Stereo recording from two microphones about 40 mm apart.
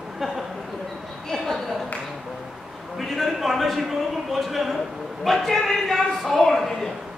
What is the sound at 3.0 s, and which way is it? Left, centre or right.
A man's voice, centre.